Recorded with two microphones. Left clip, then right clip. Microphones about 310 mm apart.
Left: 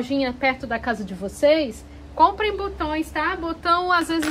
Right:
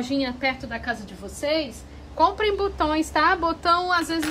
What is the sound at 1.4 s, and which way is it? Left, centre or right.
Speech, centre.